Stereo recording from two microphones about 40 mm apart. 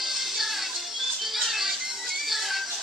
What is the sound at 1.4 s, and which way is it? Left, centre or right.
Music, centre.